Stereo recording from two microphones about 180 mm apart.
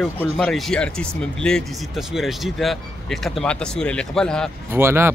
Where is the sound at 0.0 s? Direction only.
5° left (ahead or behind).